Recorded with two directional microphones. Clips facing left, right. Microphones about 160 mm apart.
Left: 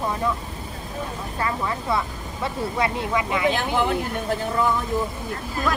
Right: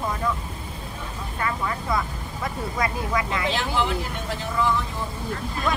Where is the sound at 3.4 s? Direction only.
50° left (ahead or behind).